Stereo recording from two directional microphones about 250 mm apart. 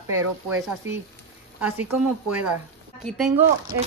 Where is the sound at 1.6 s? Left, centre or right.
Centre.